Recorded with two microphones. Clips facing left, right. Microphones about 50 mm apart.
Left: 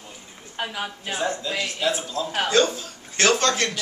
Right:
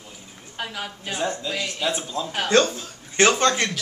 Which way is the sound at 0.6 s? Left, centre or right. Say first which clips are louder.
Left 2 dB; centre.